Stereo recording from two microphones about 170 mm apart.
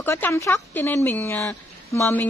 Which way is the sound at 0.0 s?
10° left (ahead or behind).